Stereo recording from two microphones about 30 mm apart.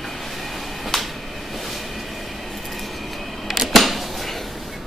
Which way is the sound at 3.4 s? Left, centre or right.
Centre.